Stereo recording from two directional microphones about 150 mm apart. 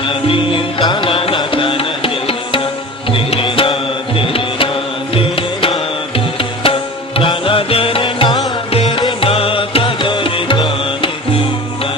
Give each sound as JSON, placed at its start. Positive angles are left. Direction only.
{"t": 0.3, "sound": "music", "side_deg": 35}